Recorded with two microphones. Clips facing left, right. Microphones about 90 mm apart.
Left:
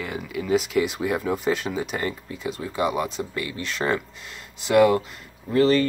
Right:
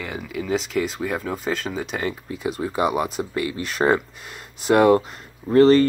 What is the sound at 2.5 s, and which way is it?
Speech, 30° right (ahead or behind).